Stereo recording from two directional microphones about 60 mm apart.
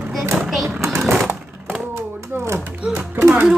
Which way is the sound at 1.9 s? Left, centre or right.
Right.